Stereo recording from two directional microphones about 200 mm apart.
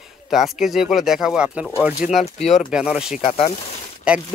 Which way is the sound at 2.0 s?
40° left (ahead or behind).